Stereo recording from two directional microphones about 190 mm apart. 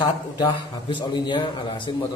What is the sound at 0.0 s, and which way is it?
A man's voice, 25° left (ahead or behind).